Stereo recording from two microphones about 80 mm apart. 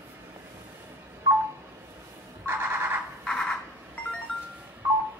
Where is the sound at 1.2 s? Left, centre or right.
Right.